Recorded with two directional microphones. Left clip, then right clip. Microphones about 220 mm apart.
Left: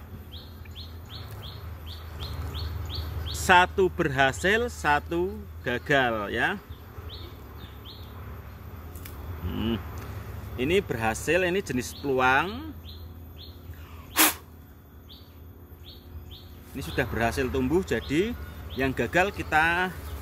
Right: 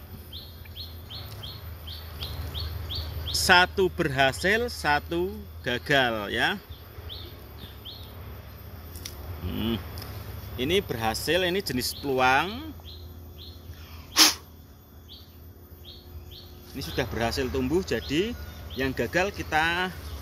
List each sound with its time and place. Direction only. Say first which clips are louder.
3.3 s speech: even; 15° right (ahead or behind)
9.5 s a sound: even; 10° right (ahead or behind)
10.6 s speech: left 1 dB; 10° left (ahead or behind); by 12.6 s 10° right (ahead or behind)
14.1 s sneeze: right 4 dB; centre (ahead or behind)
16.7 s speech: left 1 dB; 5° left (ahead or behind); by 19.3 s 20° left (ahead or behind)
19.3 s speech: left 2 dB; 5° left (ahead or behind)